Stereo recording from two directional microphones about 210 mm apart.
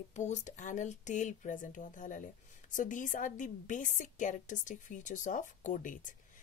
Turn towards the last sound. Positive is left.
turn(degrees=40)  # may be behind; listen again after turning